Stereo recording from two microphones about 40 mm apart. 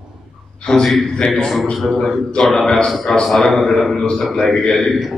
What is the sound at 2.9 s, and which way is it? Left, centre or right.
A man's voice, centre.